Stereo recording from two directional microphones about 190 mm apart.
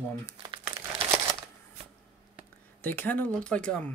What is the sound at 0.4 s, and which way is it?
Speech, 25° right (ahead or behind).